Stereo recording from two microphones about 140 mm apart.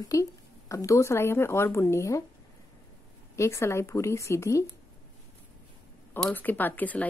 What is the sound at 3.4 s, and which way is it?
A woman's voice, 20° left (ahead or behind).